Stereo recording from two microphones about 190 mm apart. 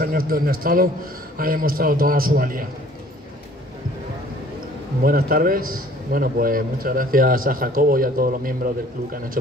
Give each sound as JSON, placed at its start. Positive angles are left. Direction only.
{"t": 0.0, "sound": "a man's voice", "side_deg": -50}
{"t": 5.0, "sound": "a man's voice", "side_deg": -50}